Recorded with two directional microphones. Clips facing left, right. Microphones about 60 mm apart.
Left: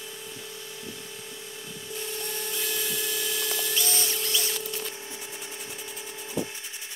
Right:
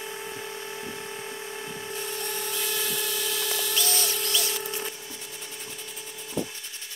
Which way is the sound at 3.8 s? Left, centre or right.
Left.